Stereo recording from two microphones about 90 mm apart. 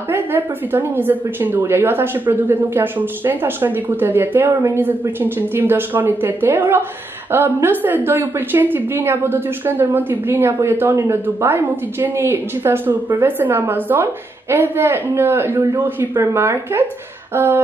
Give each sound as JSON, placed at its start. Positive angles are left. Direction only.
{"t": 0.1, "sound": "a woman's voice", "side_deg": -25}